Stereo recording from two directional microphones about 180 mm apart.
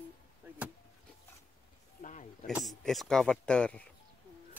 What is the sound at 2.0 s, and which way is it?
Snake, 45° left (ahead or behind).